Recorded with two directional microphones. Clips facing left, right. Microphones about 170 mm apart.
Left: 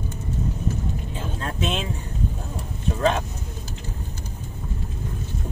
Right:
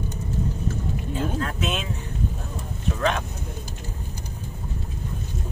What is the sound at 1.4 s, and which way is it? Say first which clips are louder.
Speech: left 1 dB; 30° left (ahead or behind).